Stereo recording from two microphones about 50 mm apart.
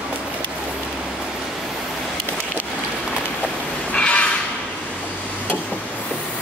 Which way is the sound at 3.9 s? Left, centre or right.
Left.